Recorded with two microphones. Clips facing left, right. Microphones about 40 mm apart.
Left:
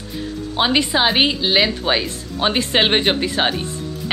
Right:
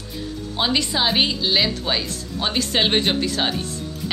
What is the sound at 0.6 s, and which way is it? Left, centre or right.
A woman's voice, left.